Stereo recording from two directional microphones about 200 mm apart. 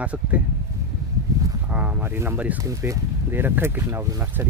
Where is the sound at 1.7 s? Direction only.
5° right (ahead or behind).